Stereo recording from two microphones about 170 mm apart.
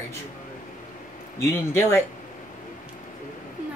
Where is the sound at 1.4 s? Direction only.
15° left (ahead or behind).